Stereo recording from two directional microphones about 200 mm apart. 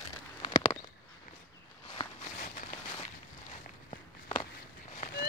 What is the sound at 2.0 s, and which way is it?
Walk, 25° left (ahead or behind).